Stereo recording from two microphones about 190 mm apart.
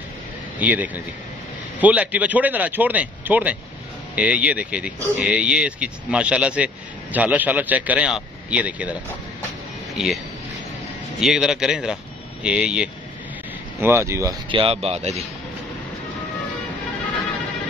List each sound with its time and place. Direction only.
0.6 s speech: 10° right (ahead or behind)
11.1 s speech: 5° right (ahead or behind)
14.5 s speech: 30° right (ahead or behind)